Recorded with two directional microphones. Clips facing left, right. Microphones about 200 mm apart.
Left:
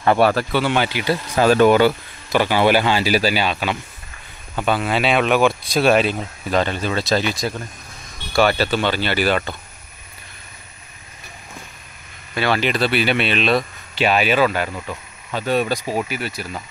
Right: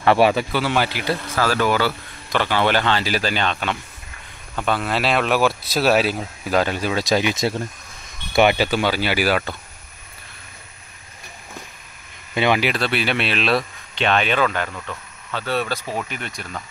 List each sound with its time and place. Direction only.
0.2 s speech: centre (ahead or behind)
1.3 s speech: 20° left (ahead or behind); by 9.6 s 5° right (ahead or behind)
12.4 s speech: 15° right (ahead or behind)
12.6 s speech: centre (ahead or behind)